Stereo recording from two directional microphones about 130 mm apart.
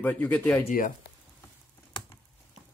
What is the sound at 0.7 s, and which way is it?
Speech, 90° left.